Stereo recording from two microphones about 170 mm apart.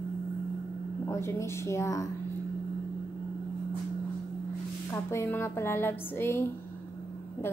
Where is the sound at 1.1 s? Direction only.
15° left (ahead or behind).